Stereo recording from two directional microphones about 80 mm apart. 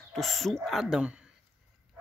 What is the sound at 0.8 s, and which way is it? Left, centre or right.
Speech, centre.